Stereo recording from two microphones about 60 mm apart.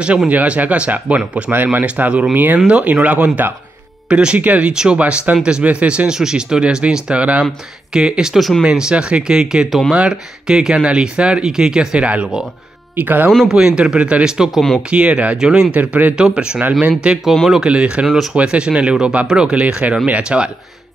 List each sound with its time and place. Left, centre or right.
0.3 s speech: right; by 8.6 s centre
8.6 s speech: centre
9.7 s speech: centre
9.9 s speech: centre
12.9 s speech: right
13.5 s speech: centre
14.9 s speech: centre
15.3 s speech: centre
15.7 s speech: right
16.2 s speech: centre
18.0 s speech: centre
18.3 s speech: centre